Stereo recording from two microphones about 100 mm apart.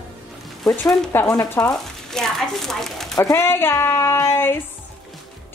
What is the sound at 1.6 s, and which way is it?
Speech, 5° left (ahead or behind).